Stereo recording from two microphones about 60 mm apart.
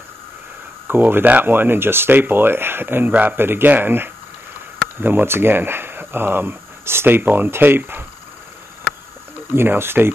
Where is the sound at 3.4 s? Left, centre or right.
Right.